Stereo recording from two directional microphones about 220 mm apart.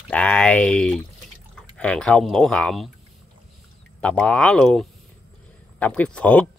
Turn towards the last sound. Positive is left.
turn(degrees=5)  # may be behind; listen again after turning